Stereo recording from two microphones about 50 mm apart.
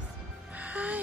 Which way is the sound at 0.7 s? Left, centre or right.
Right.